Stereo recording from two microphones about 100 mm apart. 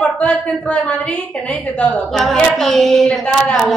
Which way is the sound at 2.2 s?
5° left (ahead or behind).